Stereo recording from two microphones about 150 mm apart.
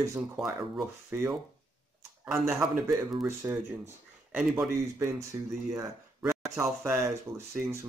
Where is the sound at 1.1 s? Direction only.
15° right (ahead or behind).